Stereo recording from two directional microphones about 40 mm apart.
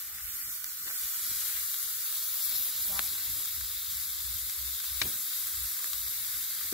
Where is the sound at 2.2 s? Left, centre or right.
Centre.